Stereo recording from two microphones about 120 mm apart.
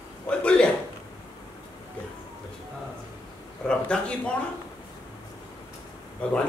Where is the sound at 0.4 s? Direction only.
10° left (ahead or behind).